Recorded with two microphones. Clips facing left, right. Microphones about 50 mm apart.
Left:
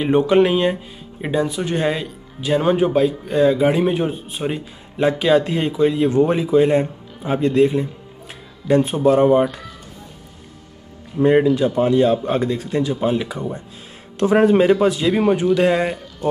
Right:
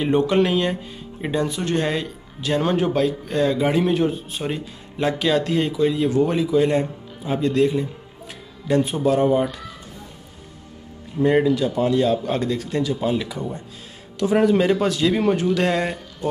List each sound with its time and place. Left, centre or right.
0.0 s speech: centre
1.2 s speech: centre; by 9.6 s left
11.1 s speech: centre
11.5 s speech: left
14.1 s speech: left
14.7 s speech: centre